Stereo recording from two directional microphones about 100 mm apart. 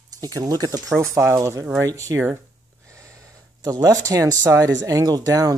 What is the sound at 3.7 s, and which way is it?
Speech, 35° right (ahead or behind).